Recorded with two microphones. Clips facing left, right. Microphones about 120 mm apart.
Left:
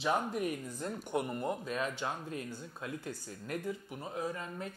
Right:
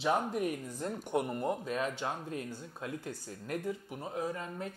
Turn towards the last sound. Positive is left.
turn(degrees=-40)  # may be behind; listen again after turning